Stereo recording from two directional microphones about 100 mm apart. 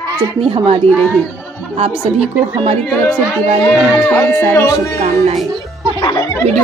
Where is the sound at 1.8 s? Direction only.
90° right.